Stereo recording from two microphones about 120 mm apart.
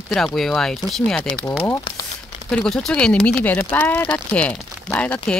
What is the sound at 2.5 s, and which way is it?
Speech, 5° left (ahead or behind).